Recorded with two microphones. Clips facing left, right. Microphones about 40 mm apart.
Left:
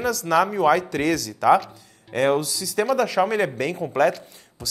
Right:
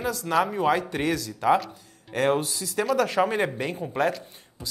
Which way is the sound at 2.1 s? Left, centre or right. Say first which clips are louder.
Left 3 dB; left.